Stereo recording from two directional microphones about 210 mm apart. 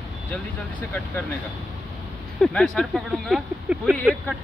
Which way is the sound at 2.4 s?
5° left (ahead or behind).